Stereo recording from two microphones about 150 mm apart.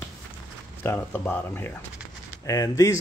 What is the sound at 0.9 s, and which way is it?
Speech, 15° left (ahead or behind).